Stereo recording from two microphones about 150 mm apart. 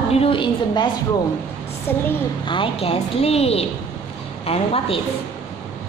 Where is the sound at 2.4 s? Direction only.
35° left (ahead or behind).